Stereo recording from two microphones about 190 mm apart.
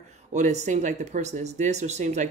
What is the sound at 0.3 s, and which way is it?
Speech, 40° right (ahead or behind).